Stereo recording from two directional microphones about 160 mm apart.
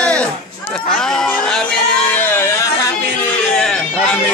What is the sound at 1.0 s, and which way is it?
Music, 5° left (ahead or behind).